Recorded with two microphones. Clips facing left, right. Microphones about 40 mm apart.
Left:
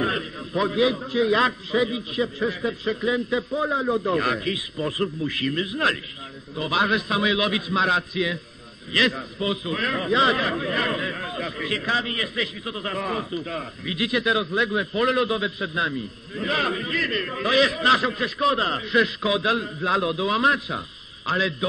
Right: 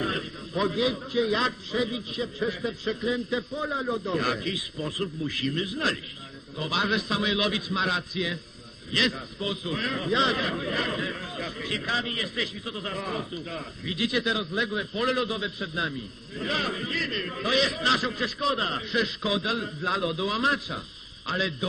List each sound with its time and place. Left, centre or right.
0.0 s a sound: left
1.2 s a man's voice: left
3.6 s a man's voice: left
7.7 s a man's voice: left
8.1 s a man's voice: left
11.8 s a man's voice: left
12.1 s a man's voice: left
13.1 s a man's voice: left
19.9 s a man's voice: left
20.2 s a man's voice: centre
21.3 s a man's voice: left